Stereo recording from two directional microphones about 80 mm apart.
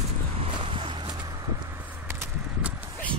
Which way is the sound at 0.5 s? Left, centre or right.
Right.